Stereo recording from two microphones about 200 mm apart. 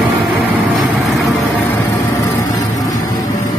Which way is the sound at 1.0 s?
Centre (ahead or behind).